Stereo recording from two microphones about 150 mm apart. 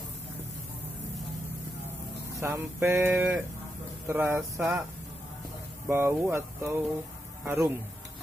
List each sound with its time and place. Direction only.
2.4 s speech: 20° right (ahead or behind)
5.9 s speech: 15° right (ahead or behind)